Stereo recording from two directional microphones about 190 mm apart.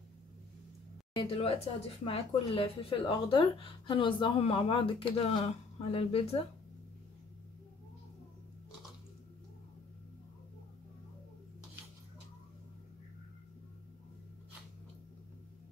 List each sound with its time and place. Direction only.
1.1 s a woman's voice: 30° left (ahead or behind)